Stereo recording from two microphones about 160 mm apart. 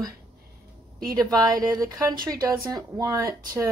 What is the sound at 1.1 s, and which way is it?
A woman's voice, 20° right (ahead or behind).